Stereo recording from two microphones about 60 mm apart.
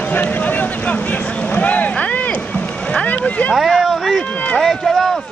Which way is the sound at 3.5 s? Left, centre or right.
Centre.